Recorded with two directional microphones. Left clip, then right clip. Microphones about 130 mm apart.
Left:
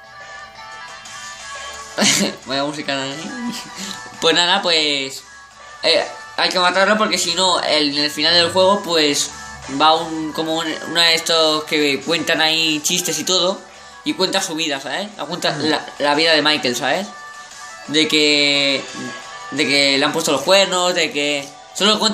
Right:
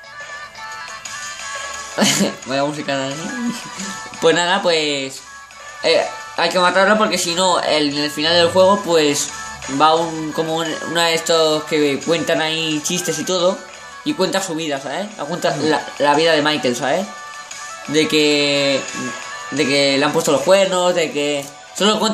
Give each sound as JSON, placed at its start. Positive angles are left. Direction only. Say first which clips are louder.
{"t": 2.0, "sound": "speech", "louder": "left 1 dB", "side_deg": -65}
{"t": 14.0, "sound": "speech", "louder": "even", "side_deg": -65}